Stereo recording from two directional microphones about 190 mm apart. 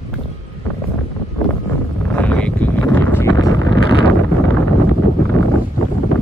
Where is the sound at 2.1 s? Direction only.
5° left (ahead or behind).